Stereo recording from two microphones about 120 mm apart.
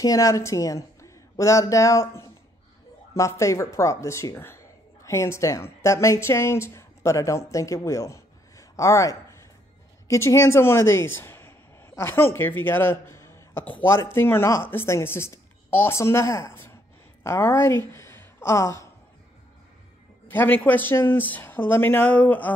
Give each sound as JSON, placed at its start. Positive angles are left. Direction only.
{"t": 0.0, "sound": "a woman's voice", "side_deg": 30}
{"t": 20.2, "sound": "speech", "side_deg": 15}